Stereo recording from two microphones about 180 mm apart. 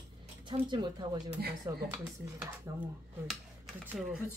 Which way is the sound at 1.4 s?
60° right (ahead or behind).